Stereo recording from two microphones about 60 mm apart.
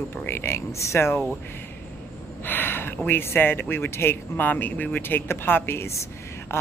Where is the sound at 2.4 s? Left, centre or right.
Left.